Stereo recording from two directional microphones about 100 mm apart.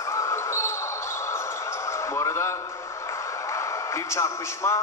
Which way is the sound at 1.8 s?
25° left (ahead or behind).